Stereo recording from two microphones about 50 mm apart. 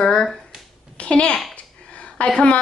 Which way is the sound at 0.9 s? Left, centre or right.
Left.